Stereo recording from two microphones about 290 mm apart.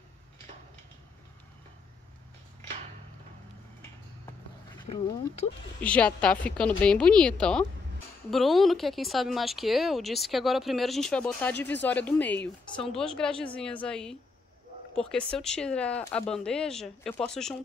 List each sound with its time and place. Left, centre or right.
4.9 s speech: left
5.8 s speech: centre